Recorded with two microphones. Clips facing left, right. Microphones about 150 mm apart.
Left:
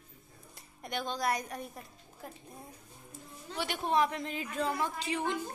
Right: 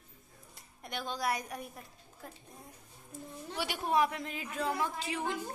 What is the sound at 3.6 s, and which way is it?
Speech, 10° right (ahead or behind).